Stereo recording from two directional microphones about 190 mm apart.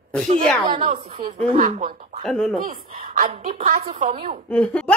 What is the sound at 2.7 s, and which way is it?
A man's voice, 30° right (ahead or behind).